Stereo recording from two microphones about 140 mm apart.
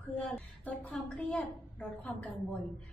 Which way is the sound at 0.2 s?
5° left (ahead or behind).